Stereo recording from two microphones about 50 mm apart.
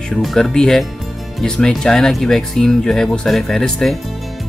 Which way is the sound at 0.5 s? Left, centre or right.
Centre.